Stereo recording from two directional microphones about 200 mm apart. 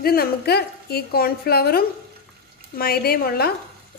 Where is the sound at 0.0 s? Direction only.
50° left (ahead or behind).